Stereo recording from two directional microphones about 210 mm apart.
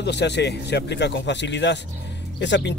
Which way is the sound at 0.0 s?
55° left (ahead or behind).